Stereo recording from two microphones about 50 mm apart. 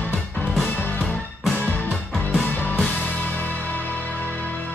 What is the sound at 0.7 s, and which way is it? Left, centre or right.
Music, left.